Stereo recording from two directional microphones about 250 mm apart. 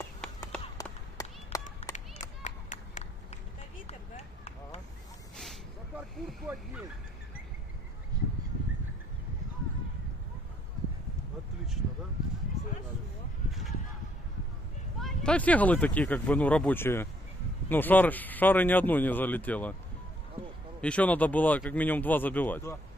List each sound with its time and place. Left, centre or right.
0.5 s run: centre
1.8 s clapping: left
5.3 s a sound: centre
13.5 s a sound: centre
15.0 s speech: centre
20.8 s speech: centre